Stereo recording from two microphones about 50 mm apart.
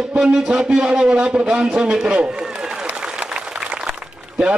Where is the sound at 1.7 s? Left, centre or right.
Centre.